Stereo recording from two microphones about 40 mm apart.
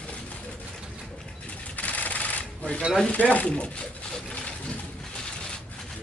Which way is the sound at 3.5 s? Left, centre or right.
Left.